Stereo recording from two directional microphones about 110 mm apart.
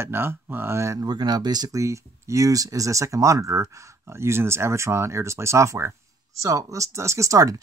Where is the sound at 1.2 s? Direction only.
40° right (ahead or behind).